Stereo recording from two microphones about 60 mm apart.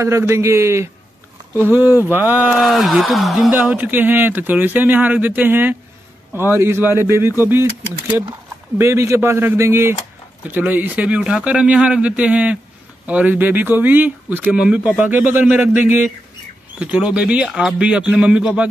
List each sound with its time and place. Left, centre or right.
0.3 s speech: right
1.6 s speech: right
2.6 s speech: centre
3.7 s speech: right
8.7 s speech: right
10.5 s speech: right
16.7 s speech: right
17.5 s speech: centre
17.8 s speech: right